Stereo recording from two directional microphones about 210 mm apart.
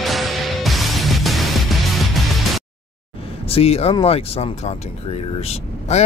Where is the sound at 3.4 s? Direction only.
30° left (ahead or behind).